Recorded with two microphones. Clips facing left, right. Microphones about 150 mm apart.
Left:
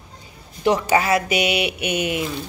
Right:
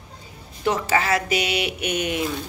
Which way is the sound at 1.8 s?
10° left (ahead or behind).